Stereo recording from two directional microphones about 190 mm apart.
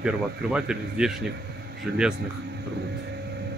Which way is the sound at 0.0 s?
5° right (ahead or behind).